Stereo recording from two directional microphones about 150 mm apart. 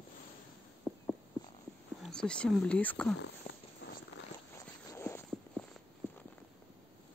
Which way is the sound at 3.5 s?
45° left (ahead or behind).